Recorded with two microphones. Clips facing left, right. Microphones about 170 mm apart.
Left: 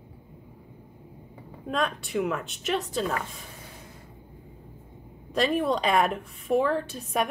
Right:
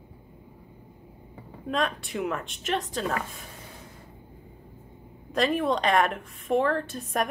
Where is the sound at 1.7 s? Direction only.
Centre (ahead or behind).